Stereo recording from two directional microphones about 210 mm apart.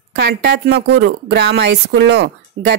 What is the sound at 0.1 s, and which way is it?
Speech, 50° right (ahead or behind).